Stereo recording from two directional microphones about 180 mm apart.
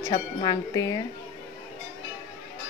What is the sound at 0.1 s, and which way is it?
Speech, 20° left (ahead or behind).